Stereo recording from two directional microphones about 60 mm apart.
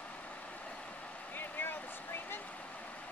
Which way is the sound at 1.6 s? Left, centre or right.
Left.